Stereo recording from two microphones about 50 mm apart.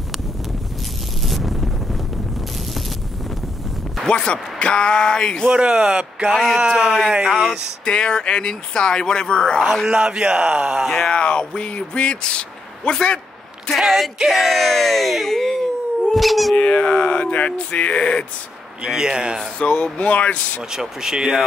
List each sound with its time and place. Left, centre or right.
1.2 s wind noise: centre
4.1 s speech: left
5.5 s speech: centre
6.7 s speech: centre
7.8 s speech: centre
9.8 s speech: centre
11.1 s speech: left
13.7 s a sound: centre
14.4 s speech: centre
16.5 s speech: left
18.9 s speech: centre
19.6 s speech: left
20.7 s speech: centre